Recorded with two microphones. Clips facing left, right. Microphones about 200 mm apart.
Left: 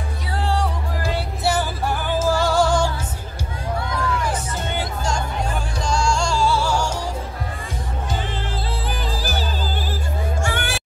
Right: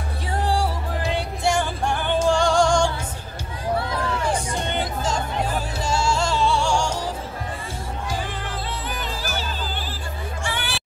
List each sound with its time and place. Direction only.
1.0 s music: 5° left (ahead or behind)
3.7 s a sound: 30° right (ahead or behind)
4.6 s music: centre (ahead or behind)
8.8 s music: 35° left (ahead or behind)
10.4 s music: 45° left (ahead or behind)